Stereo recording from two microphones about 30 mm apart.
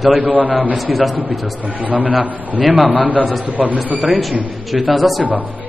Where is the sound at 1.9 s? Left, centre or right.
Right.